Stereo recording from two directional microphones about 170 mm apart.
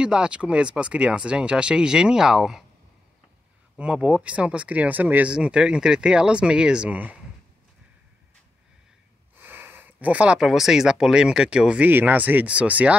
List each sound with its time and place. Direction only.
0.0 s speech: 5° right (ahead or behind)
3.7 s speech: 5° right (ahead or behind)
9.4 s speech: 10° right (ahead or behind)